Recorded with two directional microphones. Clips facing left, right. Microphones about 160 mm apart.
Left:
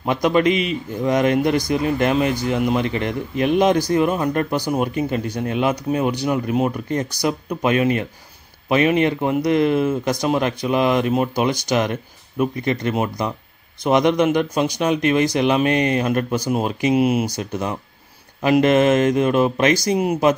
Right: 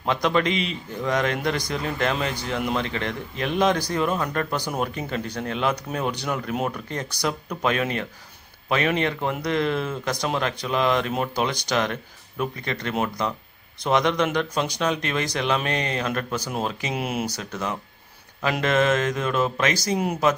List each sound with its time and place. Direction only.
0.0 s speech: 10° left (ahead or behind)
17.4 s speech: 15° left (ahead or behind)